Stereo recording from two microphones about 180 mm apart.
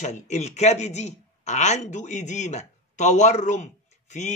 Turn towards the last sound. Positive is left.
turn(degrees=40)  # may be behind; listen again after turning